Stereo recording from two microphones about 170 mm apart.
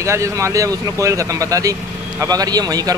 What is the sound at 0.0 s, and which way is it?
Speech, 15° right (ahead or behind).